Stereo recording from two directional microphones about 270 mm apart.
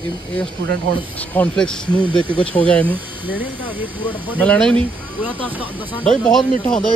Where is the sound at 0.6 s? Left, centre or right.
Right.